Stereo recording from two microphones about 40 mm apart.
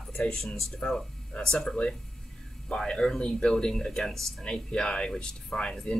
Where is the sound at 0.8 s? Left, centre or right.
Left.